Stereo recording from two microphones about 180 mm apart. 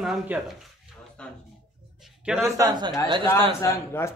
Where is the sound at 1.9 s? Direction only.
5° right (ahead or behind).